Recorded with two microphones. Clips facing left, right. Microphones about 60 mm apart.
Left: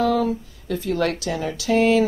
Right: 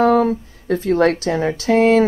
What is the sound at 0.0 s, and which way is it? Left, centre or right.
Speech, right.